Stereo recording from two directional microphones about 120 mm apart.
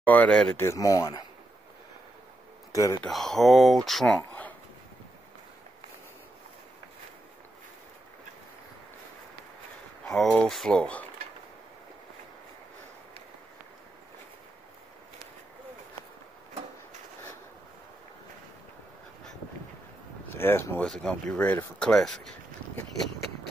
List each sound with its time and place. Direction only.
0.0 s speech: 10° left (ahead or behind)
0.6 s speech: 25° left (ahead or behind)
2.7 s speech: 25° left (ahead or behind)
3.0 s speech: 5° left (ahead or behind)
10.0 s speech: 5° left (ahead or behind)
20.2 s speech: 20° left (ahead or behind)
20.8 s speech: 5° left (ahead or behind)